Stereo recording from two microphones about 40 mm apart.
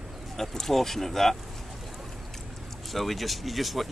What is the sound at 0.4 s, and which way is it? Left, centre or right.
Speech, centre.